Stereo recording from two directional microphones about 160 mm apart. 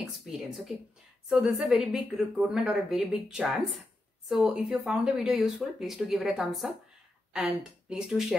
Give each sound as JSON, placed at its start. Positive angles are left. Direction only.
{"t": 0.0, "sound": "speech", "side_deg": 0}